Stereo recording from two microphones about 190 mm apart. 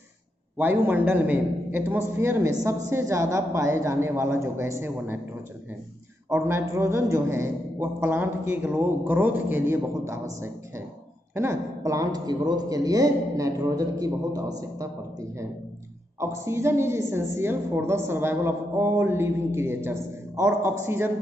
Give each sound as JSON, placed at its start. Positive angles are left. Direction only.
{"t": 0.6, "sound": "a woman's voice", "side_deg": -10}
{"t": 6.3, "sound": "a woman's voice", "side_deg": -15}
{"t": 16.2, "sound": "a woman's voice", "side_deg": -15}